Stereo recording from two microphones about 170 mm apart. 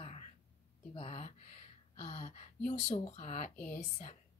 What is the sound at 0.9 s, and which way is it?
A woman's voice, 45° left (ahead or behind).